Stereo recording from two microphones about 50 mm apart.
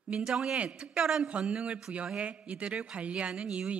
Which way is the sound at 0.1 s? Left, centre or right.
Centre.